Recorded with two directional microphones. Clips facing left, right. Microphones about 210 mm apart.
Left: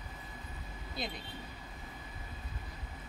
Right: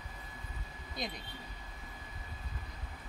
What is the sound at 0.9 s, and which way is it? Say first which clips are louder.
Speech: even; 5° left (ahead or behind).